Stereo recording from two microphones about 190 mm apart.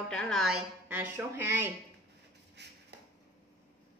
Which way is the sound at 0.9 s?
10° right (ahead or behind).